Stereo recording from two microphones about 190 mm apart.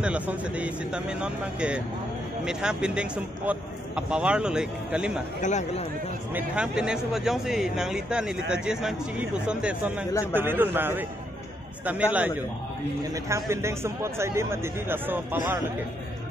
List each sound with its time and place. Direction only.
0.0 s speech: 5° right (ahead or behind)
5.4 s speech: 35° left (ahead or behind)
6.3 s a man's voice: 5° right (ahead or behind)